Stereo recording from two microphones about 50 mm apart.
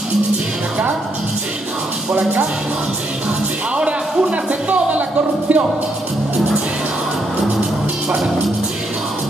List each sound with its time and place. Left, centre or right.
4.5 s speech: right